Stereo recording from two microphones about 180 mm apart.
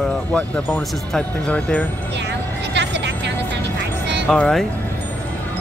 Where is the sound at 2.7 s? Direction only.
70° right (ahead or behind).